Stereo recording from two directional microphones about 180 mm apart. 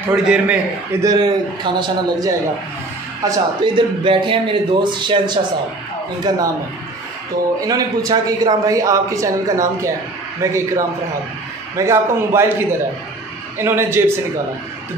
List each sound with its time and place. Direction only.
0.1 s a man's voice: 5° right (ahead or behind)
1.0 s a man's voice: 25° right (ahead or behind)
7.6 s a man's voice: 20° right (ahead or behind)
11.7 s a man's voice: 15° right (ahead or behind)